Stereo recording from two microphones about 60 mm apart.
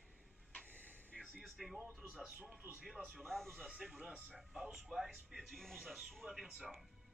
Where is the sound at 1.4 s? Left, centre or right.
Centre.